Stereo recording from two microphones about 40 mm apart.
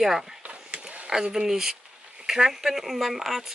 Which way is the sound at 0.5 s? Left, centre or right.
Right.